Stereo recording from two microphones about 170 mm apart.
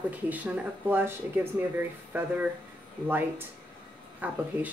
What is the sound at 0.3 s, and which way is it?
Speech, 10° right (ahead or behind).